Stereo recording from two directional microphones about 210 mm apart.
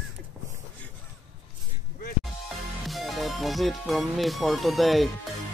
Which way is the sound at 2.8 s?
Centre (ahead or behind).